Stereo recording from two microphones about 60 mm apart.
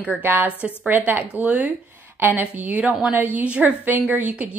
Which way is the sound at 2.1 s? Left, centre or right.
Right.